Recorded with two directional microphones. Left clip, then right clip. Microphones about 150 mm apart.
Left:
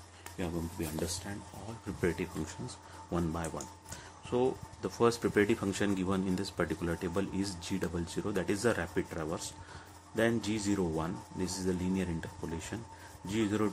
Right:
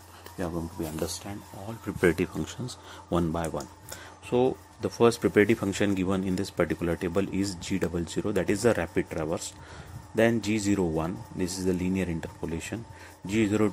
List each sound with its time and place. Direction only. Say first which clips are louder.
2.0 s speech: right 9 dB; 45° right (ahead or behind)
4.3 s speech: right 6 dB; 30° right (ahead or behind)